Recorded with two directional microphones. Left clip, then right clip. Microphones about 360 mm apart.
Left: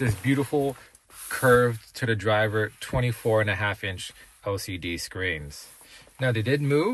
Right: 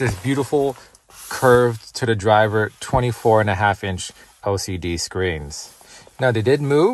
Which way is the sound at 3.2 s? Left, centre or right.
Right.